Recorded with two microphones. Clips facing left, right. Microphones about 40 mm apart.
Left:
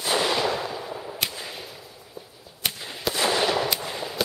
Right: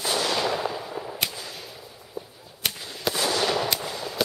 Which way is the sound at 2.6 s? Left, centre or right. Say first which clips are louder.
Even; centre.